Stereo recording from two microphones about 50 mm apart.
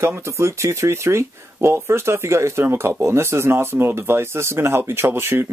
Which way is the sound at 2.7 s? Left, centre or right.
Right.